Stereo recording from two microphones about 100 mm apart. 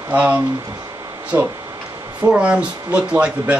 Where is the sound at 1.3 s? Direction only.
25° right (ahead or behind).